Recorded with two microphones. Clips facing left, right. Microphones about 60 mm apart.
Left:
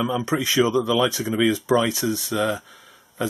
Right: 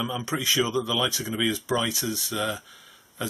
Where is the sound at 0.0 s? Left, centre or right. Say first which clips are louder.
Left 6 dB; left.